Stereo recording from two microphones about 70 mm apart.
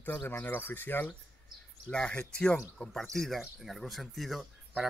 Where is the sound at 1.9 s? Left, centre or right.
Centre.